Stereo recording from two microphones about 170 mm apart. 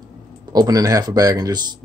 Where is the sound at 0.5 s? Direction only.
20° right (ahead or behind).